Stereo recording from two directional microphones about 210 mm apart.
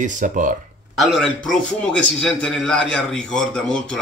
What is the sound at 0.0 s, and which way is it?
Speech, 40° right (ahead or behind).